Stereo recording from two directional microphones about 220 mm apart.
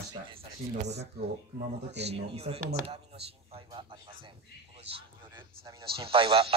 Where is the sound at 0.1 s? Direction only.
25° right (ahead or behind).